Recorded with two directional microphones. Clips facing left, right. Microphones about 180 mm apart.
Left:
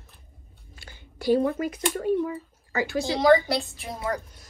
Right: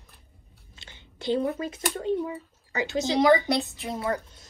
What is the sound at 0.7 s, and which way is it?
Chewing, 20° right (ahead or behind).